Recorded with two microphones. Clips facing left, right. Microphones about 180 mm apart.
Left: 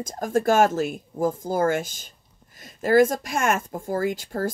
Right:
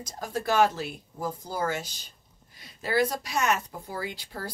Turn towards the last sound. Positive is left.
turn(degrees=45)  # may be behind; listen again after turning